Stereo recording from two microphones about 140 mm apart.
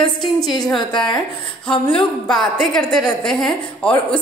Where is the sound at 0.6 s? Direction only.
5° left (ahead or behind).